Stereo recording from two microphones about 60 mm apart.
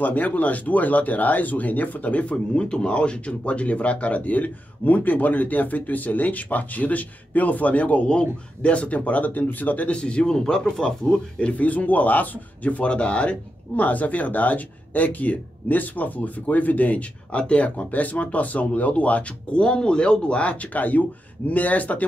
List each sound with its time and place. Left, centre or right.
0.0 s speech: left
9.9 s speech: centre